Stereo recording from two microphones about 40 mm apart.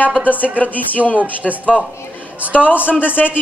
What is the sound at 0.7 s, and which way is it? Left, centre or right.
Speech, left.